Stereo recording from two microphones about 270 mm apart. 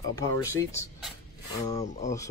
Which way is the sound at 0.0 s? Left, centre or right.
Centre.